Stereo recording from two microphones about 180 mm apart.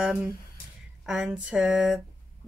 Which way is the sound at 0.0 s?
5° right (ahead or behind).